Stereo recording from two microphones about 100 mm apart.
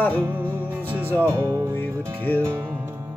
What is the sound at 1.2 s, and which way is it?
Music, 25° right (ahead or behind).